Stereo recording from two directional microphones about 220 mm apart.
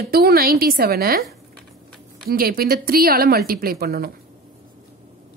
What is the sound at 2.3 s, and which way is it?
A woman's voice, 40° right (ahead or behind).